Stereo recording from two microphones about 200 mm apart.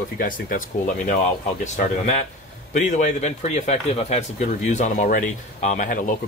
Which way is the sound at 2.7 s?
35° left (ahead or behind).